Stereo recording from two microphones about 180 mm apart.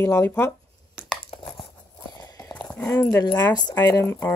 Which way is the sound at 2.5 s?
5° left (ahead or behind).